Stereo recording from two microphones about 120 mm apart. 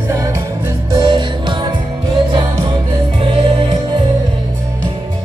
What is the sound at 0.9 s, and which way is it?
Music, 40° right (ahead or behind).